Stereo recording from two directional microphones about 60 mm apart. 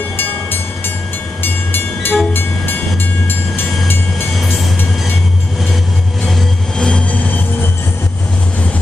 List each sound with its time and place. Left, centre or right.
0.2 s train: left
4.4 s music: centre
6.2 s vehicle: centre
6.9 s music: left